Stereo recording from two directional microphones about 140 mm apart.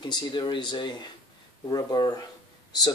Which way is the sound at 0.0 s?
30° left (ahead or behind).